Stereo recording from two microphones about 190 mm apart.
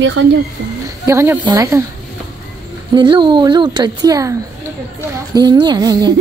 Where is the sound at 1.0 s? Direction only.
15° right (ahead or behind).